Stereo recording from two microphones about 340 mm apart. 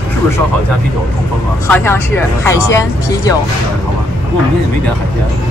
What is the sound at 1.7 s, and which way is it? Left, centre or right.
Speech, centre.